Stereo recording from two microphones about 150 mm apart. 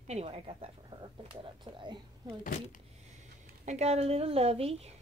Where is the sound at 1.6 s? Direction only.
30° right (ahead or behind).